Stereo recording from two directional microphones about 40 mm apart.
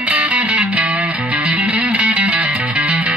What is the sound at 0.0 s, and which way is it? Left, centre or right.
Music, right.